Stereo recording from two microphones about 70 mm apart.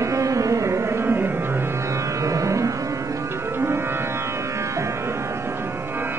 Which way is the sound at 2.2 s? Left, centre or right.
Right.